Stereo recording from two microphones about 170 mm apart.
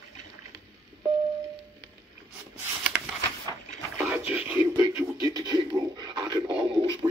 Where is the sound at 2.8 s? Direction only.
5° right (ahead or behind); by 6.4 s 25° right (ahead or behind).